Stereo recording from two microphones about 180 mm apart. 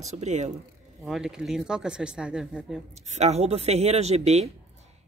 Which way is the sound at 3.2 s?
35° right (ahead or behind).